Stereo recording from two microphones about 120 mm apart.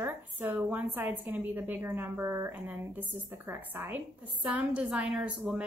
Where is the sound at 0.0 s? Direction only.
15° right (ahead or behind).